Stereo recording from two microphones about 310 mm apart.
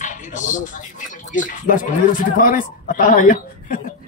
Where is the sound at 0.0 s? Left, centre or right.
Left.